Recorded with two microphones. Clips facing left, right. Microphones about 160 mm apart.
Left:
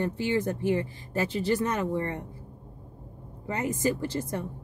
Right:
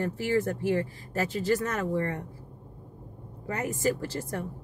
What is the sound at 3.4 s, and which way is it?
A woman's voice, 20° left (ahead or behind).